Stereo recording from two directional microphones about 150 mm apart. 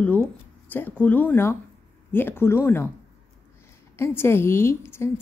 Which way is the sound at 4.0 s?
15° left (ahead or behind).